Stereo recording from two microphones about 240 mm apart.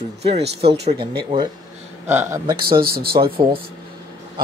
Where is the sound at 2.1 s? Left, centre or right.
Centre.